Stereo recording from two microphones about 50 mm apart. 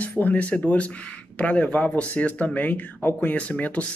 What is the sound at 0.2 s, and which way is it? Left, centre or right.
Speech, left.